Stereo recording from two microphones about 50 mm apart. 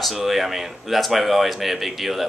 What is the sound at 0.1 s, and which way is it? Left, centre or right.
A man's voice, centre.